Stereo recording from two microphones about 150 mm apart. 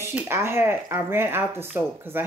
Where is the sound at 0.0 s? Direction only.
15° right (ahead or behind).